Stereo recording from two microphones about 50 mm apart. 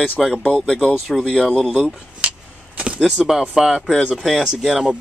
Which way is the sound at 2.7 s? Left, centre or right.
Right.